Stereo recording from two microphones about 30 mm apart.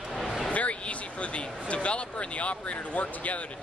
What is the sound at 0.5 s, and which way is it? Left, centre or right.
Speech, left.